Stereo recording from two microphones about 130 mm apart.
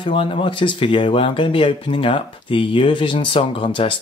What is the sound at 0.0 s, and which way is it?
Speech, 40° left (ahead or behind).